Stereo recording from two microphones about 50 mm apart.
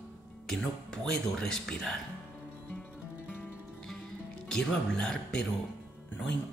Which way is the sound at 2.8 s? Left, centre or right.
Left.